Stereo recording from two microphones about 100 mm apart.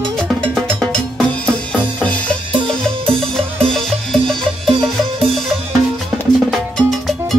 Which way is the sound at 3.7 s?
5° left (ahead or behind).